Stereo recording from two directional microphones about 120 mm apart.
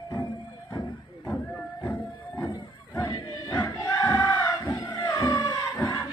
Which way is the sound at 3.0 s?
35° left (ahead or behind).